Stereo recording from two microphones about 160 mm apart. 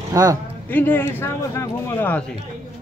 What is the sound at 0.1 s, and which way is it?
Speech, 20° right (ahead or behind).